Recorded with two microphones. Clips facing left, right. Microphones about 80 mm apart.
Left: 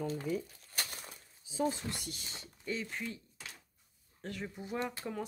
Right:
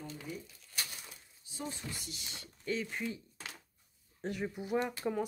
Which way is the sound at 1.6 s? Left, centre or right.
Left.